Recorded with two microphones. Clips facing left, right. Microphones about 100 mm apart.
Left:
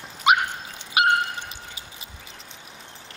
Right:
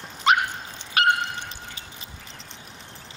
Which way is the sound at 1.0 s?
10° left (ahead or behind).